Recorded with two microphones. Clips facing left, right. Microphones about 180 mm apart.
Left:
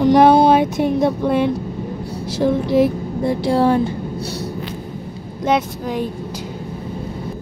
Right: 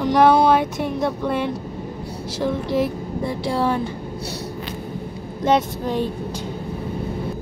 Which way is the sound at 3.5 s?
35° left (ahead or behind).